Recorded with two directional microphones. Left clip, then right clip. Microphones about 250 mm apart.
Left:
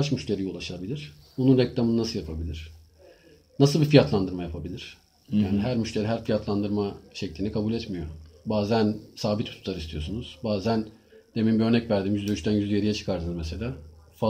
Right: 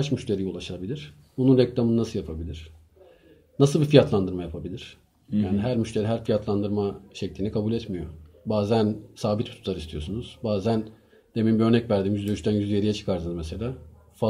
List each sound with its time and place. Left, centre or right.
0.0 s speech: right